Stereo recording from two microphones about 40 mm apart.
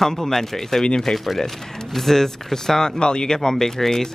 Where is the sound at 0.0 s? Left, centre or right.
Centre.